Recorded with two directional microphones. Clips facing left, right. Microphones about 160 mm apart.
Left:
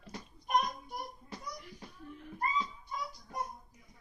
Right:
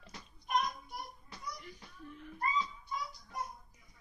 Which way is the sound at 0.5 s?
45° left (ahead or behind).